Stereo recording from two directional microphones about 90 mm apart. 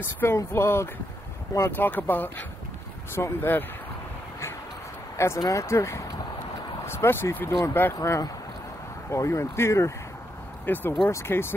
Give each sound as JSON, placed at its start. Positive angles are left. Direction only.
{"t": 0.0, "sound": "speech", "side_deg": 30}
{"t": 5.1, "sound": "speech", "side_deg": 30}